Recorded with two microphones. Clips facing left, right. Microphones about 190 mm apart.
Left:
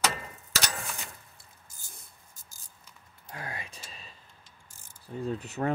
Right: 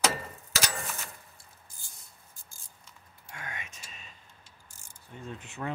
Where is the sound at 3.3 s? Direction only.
35° left (ahead or behind).